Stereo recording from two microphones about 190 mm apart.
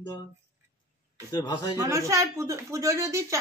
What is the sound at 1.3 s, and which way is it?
Speech, 20° left (ahead or behind).